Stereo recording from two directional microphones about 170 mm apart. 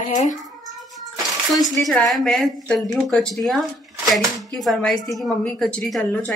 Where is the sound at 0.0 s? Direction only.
50° left (ahead or behind).